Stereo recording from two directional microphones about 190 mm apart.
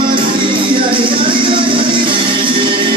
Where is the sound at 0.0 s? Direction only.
25° right (ahead or behind).